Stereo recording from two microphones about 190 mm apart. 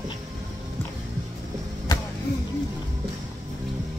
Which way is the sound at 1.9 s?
20° left (ahead or behind).